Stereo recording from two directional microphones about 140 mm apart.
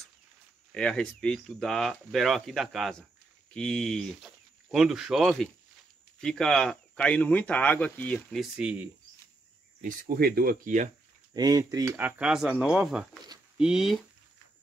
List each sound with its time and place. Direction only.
0.7 s speech: 5° left (ahead or behind)
8.5 s speech: 10° right (ahead or behind)
9.8 s speech: 90° right; by 10.9 s 70° right (ahead or behind)
11.3 s speech: 25° right (ahead or behind)
12.2 s speech: 5° right (ahead or behind)